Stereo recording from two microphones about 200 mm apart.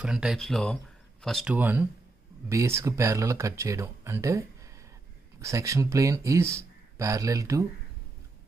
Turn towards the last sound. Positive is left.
turn(degrees=-15)  # may be behind; listen again after turning